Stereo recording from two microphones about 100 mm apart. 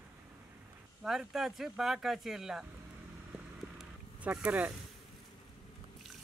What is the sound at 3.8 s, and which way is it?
Zipper, 10° right (ahead or behind).